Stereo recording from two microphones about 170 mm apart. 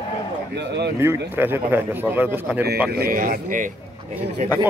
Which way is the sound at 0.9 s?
15° right (ahead or behind).